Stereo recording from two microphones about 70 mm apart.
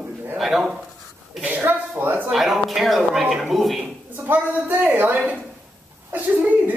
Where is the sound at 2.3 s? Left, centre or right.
Centre.